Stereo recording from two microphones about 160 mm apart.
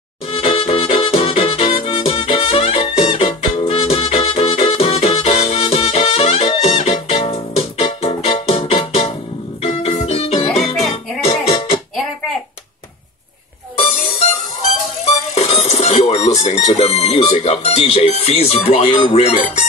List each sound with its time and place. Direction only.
0.3 s music: 35° left (ahead or behind)
10.6 s music: centre (ahead or behind)
15.3 s speech: 45° left (ahead or behind)
19.3 s speech: 50° left (ahead or behind)